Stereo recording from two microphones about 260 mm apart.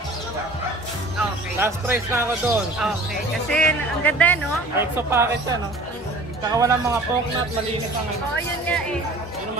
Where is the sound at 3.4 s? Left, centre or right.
Centre.